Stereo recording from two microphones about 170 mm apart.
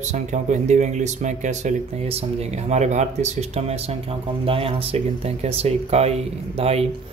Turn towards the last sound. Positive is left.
turn(degrees=-35)  # may be behind; listen again after turning